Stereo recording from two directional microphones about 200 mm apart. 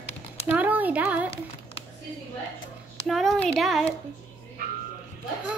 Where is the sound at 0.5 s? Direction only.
10° right (ahead or behind).